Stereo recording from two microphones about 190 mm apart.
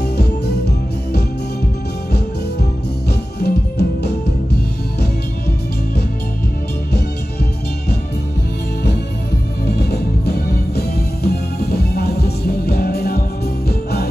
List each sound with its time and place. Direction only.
0.2 s music: 60° left (ahead or behind)
3.1 s music: 60° left (ahead or behind)
9.7 s music: 60° left (ahead or behind)